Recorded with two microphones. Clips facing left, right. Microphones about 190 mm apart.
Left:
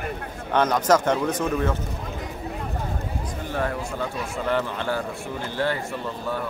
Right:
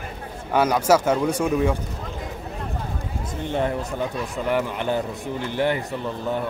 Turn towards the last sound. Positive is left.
turn(degrees=-20)  # may be behind; listen again after turning